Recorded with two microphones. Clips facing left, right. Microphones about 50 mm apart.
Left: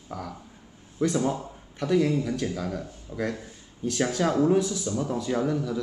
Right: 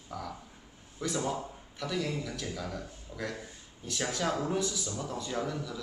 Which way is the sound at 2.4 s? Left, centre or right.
Left.